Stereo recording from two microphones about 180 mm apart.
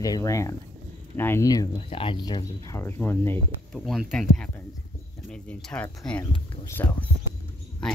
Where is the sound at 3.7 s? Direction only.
Centre (ahead or behind).